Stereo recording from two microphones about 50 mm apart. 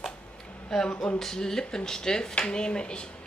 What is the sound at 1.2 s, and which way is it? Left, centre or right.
Speech, centre.